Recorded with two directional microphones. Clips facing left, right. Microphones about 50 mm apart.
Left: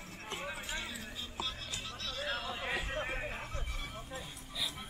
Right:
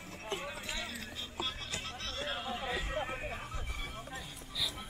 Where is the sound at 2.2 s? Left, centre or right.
Centre.